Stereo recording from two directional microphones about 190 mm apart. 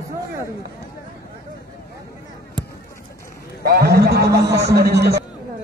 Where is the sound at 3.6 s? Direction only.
55° right (ahead or behind).